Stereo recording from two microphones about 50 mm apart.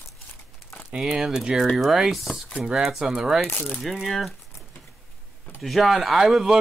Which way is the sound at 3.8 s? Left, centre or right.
Centre.